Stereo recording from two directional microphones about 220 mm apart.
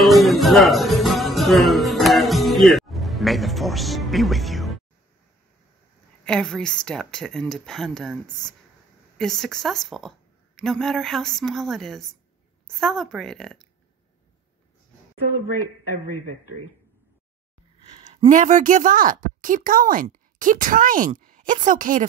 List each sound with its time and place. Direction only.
0.0 s music: centre (ahead or behind)
6.2 s a woman's voice: 5° left (ahead or behind)
18.3 s speech: 35° right (ahead or behind)